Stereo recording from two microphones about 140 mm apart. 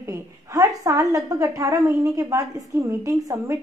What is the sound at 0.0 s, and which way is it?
A woman's voice, 20° right (ahead or behind).